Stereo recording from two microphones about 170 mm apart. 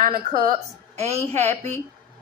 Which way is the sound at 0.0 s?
50° right (ahead or behind).